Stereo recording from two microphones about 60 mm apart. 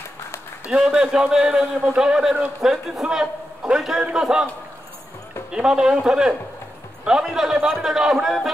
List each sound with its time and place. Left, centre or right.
0.7 s a man's voice: centre
5.5 s a man's voice: centre